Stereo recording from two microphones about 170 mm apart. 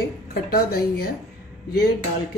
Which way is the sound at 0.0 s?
65° left (ahead or behind).